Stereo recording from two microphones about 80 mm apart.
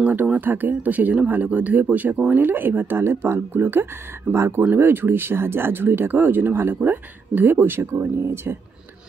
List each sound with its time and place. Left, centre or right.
0.0 s speech: right